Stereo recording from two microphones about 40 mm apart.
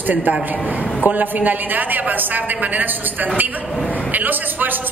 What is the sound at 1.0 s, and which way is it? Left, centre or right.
Speech, right.